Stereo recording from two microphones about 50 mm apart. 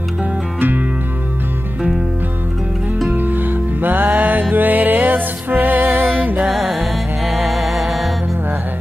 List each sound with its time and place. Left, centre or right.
0.6 s music: right
3.1 s music: right
6.4 s music: centre